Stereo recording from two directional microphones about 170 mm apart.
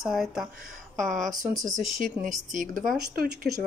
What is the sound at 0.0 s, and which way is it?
Speech, centre (ahead or behind).